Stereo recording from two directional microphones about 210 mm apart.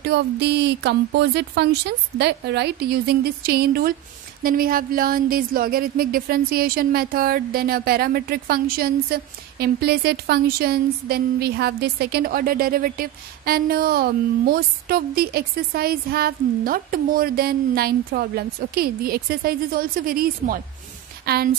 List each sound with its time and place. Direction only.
0.1 s speech: 50° right (ahead or behind)